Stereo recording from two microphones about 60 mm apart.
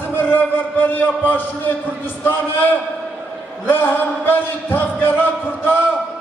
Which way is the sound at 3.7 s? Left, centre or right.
Left.